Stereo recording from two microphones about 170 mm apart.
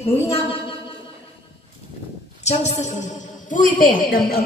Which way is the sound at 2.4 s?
40° left (ahead or behind).